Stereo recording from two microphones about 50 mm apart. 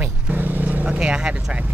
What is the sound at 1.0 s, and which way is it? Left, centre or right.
Speech, centre.